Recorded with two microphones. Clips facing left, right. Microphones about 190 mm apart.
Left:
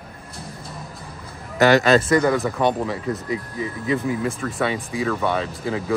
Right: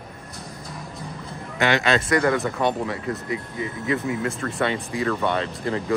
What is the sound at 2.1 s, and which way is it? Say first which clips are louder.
Speech: left 2 dB; centre (ahead or behind).